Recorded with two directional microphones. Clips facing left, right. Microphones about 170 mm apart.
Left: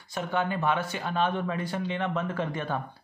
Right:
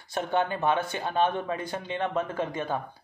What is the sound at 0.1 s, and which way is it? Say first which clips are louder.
Speech: right 2 dB; 25° right (ahead or behind).